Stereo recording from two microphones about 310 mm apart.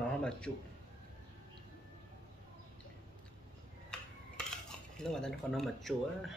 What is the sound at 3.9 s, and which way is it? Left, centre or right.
Dishes, centre.